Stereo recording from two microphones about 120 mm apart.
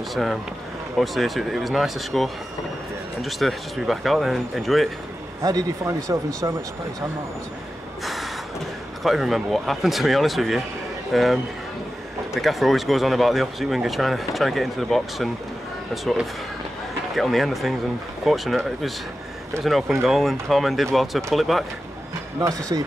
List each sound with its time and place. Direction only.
0.1 s speech: centre (ahead or behind)
5.4 s speech: 30° right (ahead or behind)
8.0 s gasp: centre (ahead or behind)
9.0 s speech: centre (ahead or behind)
12.4 s speech: centre (ahead or behind)
22.4 s speech: 30° right (ahead or behind)